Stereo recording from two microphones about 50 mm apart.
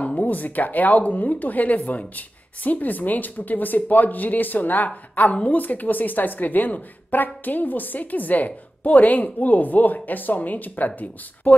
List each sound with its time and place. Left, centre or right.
0.0 s speech: left